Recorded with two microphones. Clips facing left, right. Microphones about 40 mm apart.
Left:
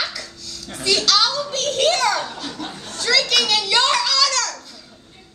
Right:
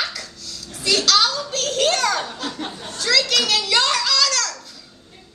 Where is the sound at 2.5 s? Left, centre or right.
Centre.